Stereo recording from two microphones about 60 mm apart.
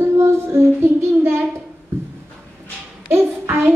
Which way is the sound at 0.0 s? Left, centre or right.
Right.